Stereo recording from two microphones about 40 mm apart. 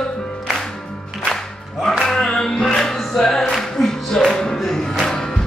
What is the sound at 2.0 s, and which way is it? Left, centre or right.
Music, centre.